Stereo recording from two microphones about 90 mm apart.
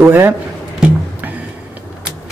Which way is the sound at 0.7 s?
15° right (ahead or behind).